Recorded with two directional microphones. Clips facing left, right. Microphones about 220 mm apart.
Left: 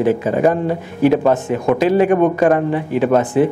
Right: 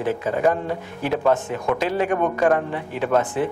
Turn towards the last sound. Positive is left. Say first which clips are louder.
# left 7 dB
turn(degrees=10)  # may be behind; listen again after turning